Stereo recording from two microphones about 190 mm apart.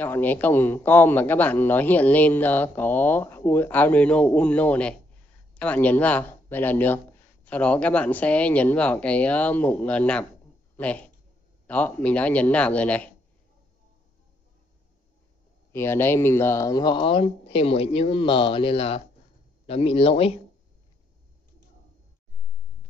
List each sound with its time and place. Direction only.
0.0 s a man's voice: 10° left (ahead or behind)
15.7 s a man's voice: 15° left (ahead or behind); by 20.3 s 30° left (ahead or behind)